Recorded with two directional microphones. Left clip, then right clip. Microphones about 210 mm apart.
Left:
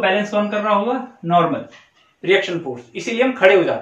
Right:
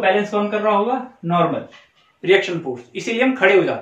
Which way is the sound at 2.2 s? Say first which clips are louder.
Right 1 dB; 15° right (ahead or behind).